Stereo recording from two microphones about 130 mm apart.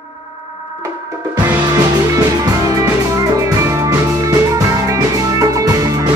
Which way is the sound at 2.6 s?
25° right (ahead or behind).